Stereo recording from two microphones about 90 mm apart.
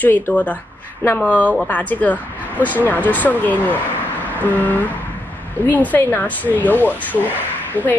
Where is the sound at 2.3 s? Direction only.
20° left (ahead or behind).